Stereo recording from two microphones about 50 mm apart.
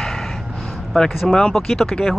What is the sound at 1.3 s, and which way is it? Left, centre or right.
Speech, centre.